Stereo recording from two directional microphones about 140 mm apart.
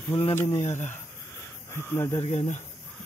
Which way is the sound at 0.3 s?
15° left (ahead or behind).